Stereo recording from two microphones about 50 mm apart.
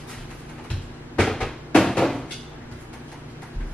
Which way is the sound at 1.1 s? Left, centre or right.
Centre.